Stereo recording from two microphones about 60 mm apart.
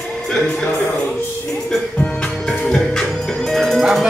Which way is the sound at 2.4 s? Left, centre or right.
Centre.